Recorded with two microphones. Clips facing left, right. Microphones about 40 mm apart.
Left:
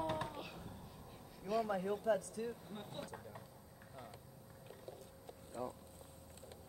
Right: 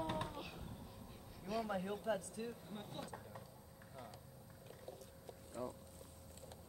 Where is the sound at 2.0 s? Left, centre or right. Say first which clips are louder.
Left 5 dB; right.